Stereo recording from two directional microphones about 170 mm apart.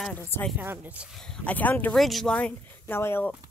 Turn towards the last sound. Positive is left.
turn(degrees=15)  # may be behind; listen again after turning